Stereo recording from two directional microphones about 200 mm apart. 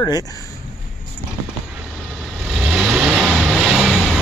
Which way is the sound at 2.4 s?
Centre (ahead or behind).